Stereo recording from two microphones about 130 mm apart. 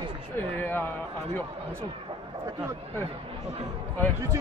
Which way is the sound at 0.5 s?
15° left (ahead or behind).